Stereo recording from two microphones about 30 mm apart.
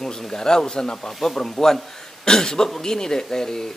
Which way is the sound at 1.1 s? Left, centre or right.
Centre.